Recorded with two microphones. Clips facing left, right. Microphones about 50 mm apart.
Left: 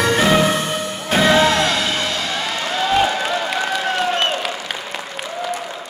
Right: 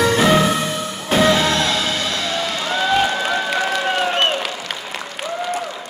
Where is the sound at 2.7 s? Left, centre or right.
Right.